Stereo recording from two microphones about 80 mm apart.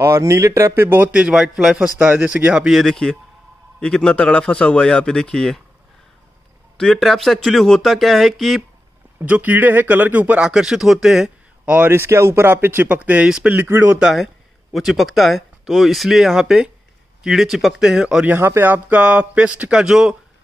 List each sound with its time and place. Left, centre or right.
0.0 s speech: right
0.8 s speech: right
1.1 s speech: centre
2.0 s speech: right
2.7 s speech: centre
6.8 s speech: centre
9.2 s speech: centre
10.5 s speech: centre
11.6 s a man's voice: centre
11.9 s speech: right
14.0 s speech: centre
18.2 s speech: right; by 20.2 s centre